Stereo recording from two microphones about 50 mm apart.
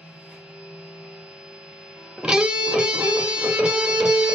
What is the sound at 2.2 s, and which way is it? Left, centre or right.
Music, centre.